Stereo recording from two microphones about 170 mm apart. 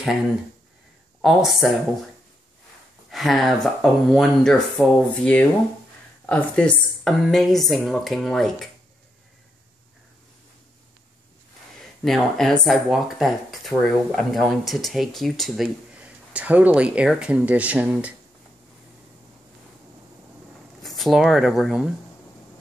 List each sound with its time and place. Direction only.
1.2 s speech: centre (ahead or behind)
3.1 s speech: centre (ahead or behind)
12.0 s speech: centre (ahead or behind)
20.8 s speech: centre (ahead or behind)